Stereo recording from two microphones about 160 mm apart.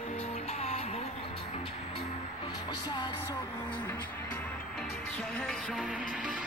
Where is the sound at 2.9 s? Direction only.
30° left (ahead or behind).